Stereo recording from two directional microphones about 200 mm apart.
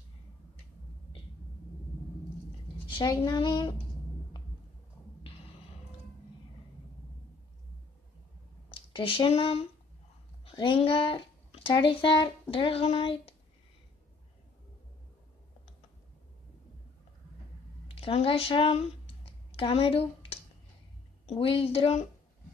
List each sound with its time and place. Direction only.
2.9 s a woman's voice: 20° left (ahead or behind)
8.6 s speech: 25° left (ahead or behind)
17.8 s a sound: 25° left (ahead or behind)
21.3 s a woman's voice: 30° left (ahead or behind)